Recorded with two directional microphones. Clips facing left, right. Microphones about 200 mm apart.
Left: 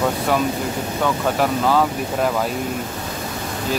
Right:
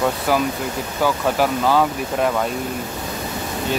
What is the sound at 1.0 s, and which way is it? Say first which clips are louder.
Speech: right 1 dB; centre (ahead or behind).